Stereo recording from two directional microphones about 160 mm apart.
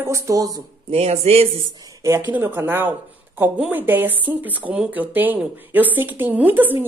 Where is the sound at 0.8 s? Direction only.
40° right (ahead or behind).